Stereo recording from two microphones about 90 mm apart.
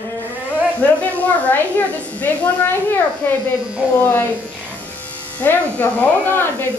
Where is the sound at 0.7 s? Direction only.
15° left (ahead or behind).